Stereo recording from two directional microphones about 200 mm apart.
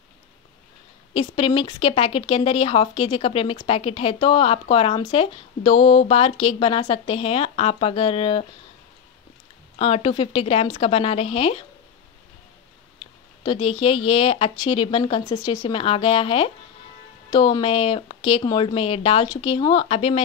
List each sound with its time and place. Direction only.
1.1 s speech: 25° left (ahead or behind)
9.8 s speech: 30° left (ahead or behind)
13.0 s speech: 25° left (ahead or behind)